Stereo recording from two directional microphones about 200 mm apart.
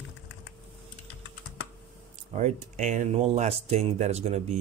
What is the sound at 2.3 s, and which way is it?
Speech, 35° right (ahead or behind).